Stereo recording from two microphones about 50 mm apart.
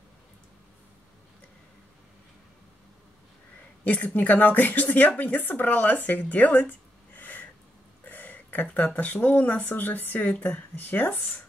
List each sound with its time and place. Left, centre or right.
3.8 s a woman's voice: left
8.1 s a sound: left
8.8 s a woman's voice: left